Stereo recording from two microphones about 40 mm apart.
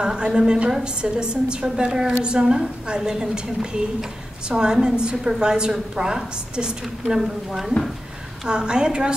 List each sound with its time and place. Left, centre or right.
0.0 s a woman's voice: centre
8.5 s a woman's voice: right